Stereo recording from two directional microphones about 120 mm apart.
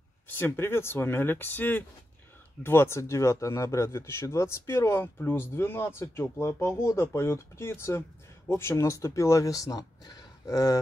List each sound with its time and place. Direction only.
0.4 s a man's voice: 20° left (ahead or behind)